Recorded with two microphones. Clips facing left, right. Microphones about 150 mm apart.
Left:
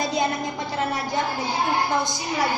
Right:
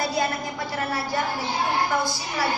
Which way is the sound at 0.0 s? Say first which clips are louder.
Left 1 dB; 20° left (ahead or behind).